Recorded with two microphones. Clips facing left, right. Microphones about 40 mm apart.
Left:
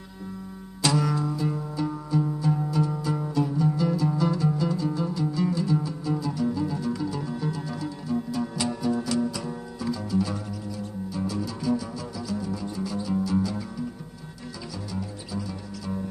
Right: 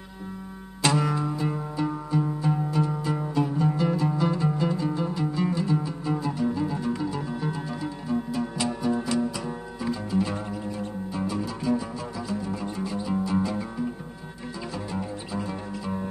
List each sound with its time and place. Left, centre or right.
0.8 s music: right
12.9 s music: right